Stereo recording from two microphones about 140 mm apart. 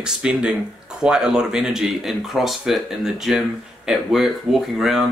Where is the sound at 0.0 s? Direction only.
5° right (ahead or behind).